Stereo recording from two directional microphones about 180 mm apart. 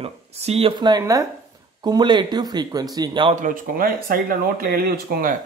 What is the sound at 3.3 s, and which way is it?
Speech, 50° right (ahead or behind).